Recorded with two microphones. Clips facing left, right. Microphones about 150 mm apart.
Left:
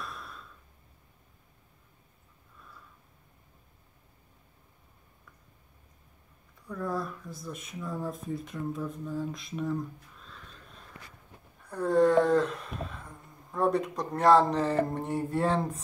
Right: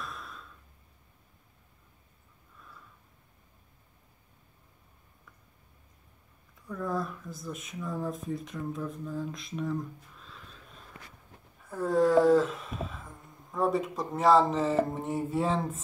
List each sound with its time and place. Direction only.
0.0 s sigh: centre (ahead or behind)
6.7 s speech: centre (ahead or behind)
11.6 s a sound: centre (ahead or behind)